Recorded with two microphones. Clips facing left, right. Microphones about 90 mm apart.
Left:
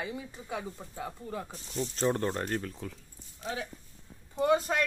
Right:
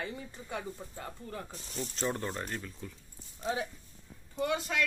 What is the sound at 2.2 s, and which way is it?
Speech, 50° left (ahead or behind).